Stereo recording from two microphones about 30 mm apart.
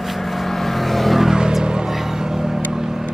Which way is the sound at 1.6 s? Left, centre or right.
Right.